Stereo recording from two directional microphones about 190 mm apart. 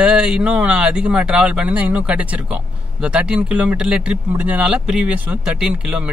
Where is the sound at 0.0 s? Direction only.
5° right (ahead or behind).